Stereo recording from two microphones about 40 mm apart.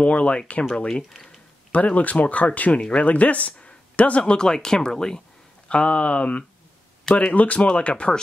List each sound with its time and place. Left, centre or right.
0.0 s speech: left
1.7 s speech: left
2.8 s speech: left
3.1 s speech: left
4.2 s speech: centre
5.7 s speech: left